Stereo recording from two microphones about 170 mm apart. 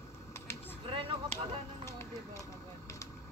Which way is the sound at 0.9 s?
30° right (ahead or behind).